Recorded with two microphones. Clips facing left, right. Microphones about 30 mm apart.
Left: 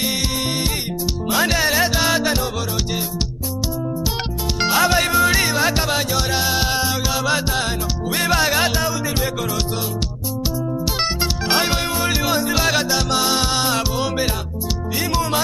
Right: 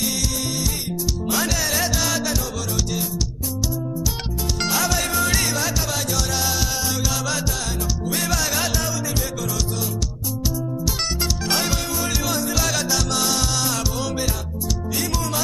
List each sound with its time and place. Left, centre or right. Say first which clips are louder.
1.3 s music: left 6 dB; left
4.6 s music: left 6 dB; left
8.1 s music: left 7 dB; left
11.4 s music: left 5 dB; left